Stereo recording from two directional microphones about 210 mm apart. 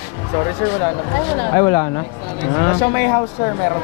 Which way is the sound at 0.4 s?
20° left (ahead or behind).